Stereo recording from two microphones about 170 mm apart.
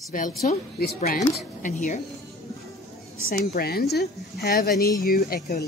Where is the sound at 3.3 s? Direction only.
65° left (ahead or behind).